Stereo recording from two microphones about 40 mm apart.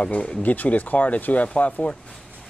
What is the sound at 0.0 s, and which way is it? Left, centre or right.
Speech, left.